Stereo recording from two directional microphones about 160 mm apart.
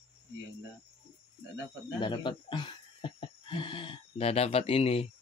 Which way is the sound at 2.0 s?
30° left (ahead or behind).